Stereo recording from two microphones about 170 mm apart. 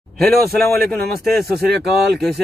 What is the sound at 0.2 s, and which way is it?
Speech, centre (ahead or behind).